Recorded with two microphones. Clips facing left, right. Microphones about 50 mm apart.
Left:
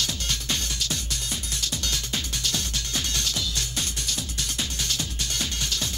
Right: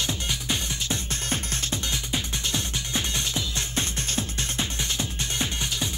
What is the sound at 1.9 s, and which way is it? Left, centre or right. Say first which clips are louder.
Music: right 1 dB; right.